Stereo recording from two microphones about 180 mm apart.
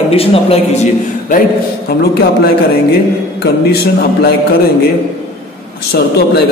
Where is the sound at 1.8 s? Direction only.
60° left (ahead or behind).